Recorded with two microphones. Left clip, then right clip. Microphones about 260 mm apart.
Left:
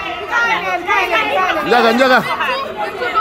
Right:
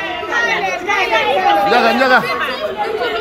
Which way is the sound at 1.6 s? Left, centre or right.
Left.